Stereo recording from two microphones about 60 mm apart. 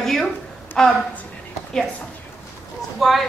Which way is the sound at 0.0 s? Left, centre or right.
Centre.